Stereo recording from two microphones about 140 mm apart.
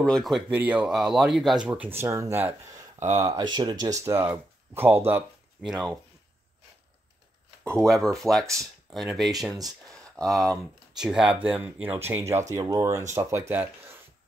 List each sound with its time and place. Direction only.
0.0 s speech: 5° left (ahead or behind)
0.5 s speech: 10° right (ahead or behind)
3.2 s speech: 30° right (ahead or behind); by 5.2 s 15° right (ahead or behind)
5.7 s speech: 5° right (ahead or behind)
7.8 s speech: centre (ahead or behind)
9.5 s speech: 25° right (ahead or behind)
9.8 s speech: 5° left (ahead or behind); by 13.9 s 15° right (ahead or behind)